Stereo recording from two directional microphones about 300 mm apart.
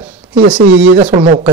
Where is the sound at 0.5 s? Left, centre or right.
Centre.